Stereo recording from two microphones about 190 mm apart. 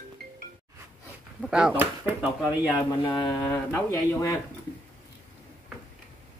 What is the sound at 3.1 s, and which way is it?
Speech, 25° left (ahead or behind).